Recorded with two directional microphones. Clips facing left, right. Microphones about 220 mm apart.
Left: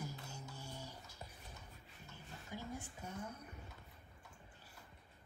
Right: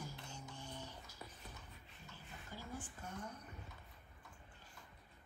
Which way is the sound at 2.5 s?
15° left (ahead or behind).